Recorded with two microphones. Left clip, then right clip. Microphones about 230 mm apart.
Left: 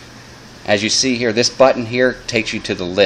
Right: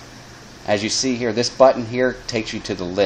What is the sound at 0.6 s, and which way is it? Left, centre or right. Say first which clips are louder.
Speech: left 5 dB; centre.